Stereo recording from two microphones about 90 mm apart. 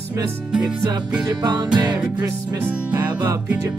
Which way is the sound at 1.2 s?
50° right (ahead or behind).